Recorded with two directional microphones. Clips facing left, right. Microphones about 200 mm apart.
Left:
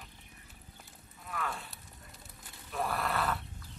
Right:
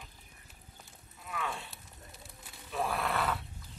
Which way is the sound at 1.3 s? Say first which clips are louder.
Even; centre (ahead or behind).